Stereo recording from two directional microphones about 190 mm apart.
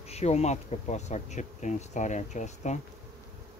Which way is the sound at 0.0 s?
35° left (ahead or behind).